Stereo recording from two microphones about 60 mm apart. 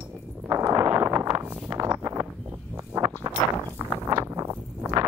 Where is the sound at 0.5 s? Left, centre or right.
Right.